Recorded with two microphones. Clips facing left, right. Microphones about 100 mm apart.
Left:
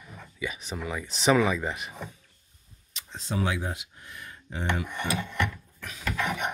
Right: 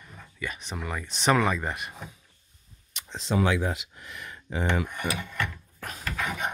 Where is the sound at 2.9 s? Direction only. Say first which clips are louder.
Right 5 dB; 85° right.